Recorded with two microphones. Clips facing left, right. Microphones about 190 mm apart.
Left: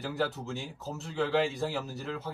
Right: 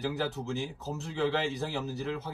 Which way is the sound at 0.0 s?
Centre (ahead or behind).